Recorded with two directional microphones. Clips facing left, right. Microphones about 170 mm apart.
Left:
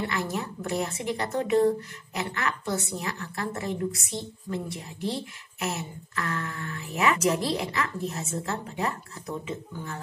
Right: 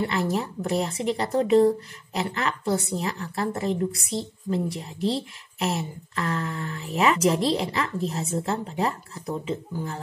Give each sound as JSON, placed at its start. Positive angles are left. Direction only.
{"t": 0.0, "sound": "a woman's voice", "side_deg": -30}